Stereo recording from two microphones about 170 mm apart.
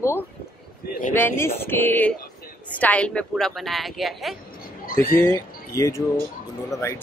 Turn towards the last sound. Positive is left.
turn(degrees=15)  # may be behind; listen again after turning